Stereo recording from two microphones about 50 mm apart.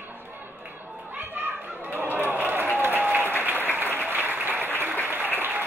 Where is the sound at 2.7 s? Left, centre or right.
Right.